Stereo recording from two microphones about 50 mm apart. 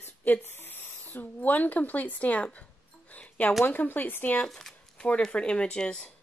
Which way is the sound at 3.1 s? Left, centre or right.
Left.